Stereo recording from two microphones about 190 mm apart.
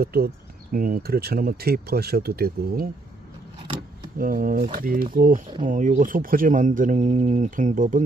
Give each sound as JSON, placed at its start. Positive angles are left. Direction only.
{"t": 0.0, "sound": "speech", "side_deg": -55}
{"t": 4.2, "sound": "speech", "side_deg": -45}